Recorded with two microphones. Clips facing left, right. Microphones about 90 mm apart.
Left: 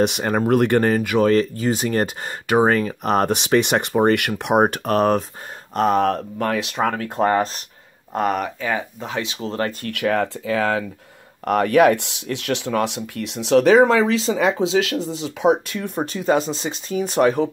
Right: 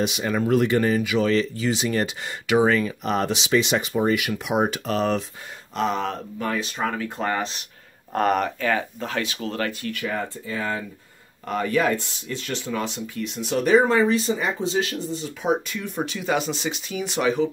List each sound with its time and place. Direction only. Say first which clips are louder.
0.0 s speech: left 4 dB; 55° left (ahead or behind)
8.1 s speech: even; 10° left (ahead or behind); by 9.8 s 30° left (ahead or behind)
9.8 s speech: left 7 dB; 65° left (ahead or behind); by 10.9 s 90° left
11.4 s speech: left 8 dB; 65° left (ahead or behind)
16.0 s speech: left 5 dB; 30° left (ahead or behind)
17.0 s speech: left 4 dB; 50° left (ahead or behind)